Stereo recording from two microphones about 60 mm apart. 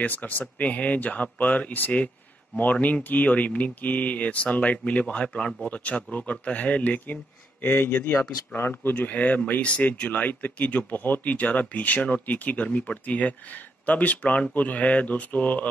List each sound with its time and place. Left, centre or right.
0.0 s speech: left